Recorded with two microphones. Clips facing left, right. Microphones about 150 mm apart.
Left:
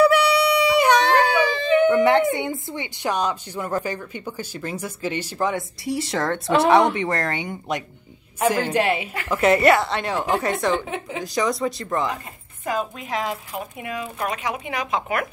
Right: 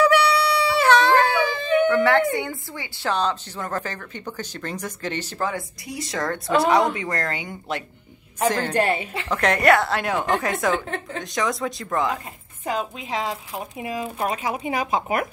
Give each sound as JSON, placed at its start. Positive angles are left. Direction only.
{"t": 0.0, "sound": "a sound", "side_deg": 10}
{"t": 1.9, "sound": "a woman's voice", "side_deg": 15}
{"t": 5.5, "sound": "a woman's voice", "side_deg": 30}
{"t": 12.6, "sound": "a woman's voice", "side_deg": -20}